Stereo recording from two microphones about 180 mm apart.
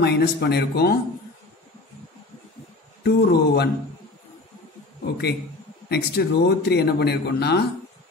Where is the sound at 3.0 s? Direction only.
65° left (ahead or behind).